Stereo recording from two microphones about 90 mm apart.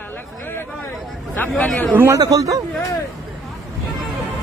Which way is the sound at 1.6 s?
20° left (ahead or behind).